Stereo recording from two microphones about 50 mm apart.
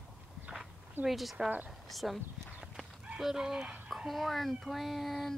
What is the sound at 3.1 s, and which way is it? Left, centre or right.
Speech, centre.